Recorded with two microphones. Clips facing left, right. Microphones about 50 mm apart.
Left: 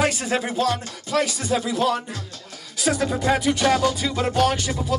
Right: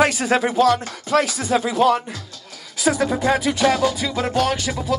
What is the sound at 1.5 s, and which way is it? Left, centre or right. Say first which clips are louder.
Speech: right 6 dB; right.